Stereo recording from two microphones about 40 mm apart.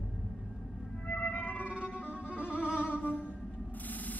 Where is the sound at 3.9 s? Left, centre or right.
Left.